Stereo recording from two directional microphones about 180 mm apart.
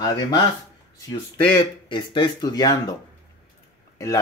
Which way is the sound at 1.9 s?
25° left (ahead or behind).